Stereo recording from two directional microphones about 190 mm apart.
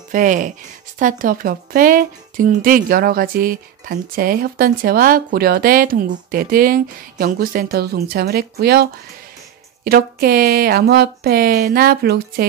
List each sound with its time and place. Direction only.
0.1 s speech: 45° right (ahead or behind)
9.8 s speech: 50° right (ahead or behind)